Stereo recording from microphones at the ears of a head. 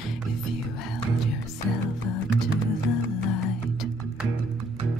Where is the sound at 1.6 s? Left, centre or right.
Left.